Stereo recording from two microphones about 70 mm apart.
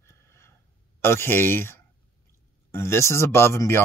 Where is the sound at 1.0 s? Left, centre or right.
Left.